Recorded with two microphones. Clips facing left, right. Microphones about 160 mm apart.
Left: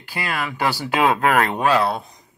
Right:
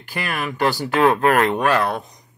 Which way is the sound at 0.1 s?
15° left (ahead or behind).